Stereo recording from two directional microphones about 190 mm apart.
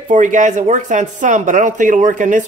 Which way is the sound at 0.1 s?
40° right (ahead or behind).